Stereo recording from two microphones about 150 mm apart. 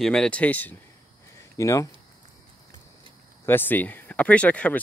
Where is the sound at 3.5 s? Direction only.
15° left (ahead or behind).